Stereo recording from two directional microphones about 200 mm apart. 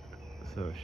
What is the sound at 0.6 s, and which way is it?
Speech, 35° left (ahead or behind).